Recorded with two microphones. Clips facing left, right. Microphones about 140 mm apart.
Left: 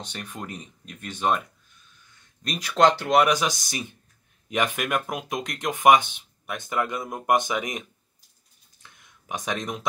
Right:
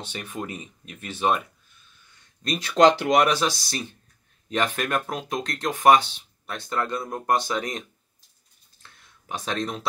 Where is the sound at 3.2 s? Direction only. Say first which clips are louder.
Even; 15° left (ahead or behind).